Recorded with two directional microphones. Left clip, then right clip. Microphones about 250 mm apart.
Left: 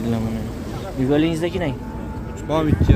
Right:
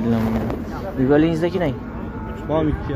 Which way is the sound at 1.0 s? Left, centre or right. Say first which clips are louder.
Right 2 dB; centre.